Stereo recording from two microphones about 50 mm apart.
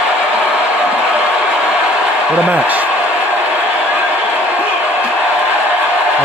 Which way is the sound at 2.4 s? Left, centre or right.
Right.